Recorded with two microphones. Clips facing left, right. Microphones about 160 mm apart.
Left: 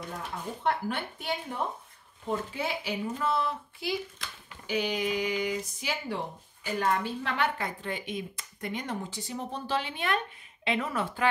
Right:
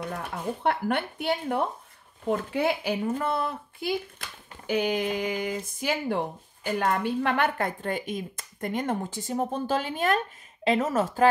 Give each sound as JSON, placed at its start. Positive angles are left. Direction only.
{"t": 0.0, "sound": "speech", "side_deg": -60}